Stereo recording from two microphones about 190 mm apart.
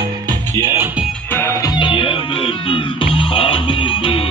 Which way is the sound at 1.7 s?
25° left (ahead or behind).